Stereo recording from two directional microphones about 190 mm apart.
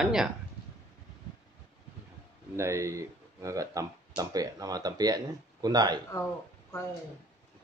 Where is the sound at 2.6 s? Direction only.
15° right (ahead or behind).